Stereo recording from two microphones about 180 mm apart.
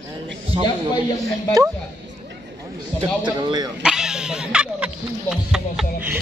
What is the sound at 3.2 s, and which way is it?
Speech, 25° right (ahead or behind).